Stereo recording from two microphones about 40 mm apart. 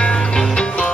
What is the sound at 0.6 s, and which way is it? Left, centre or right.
Music, left.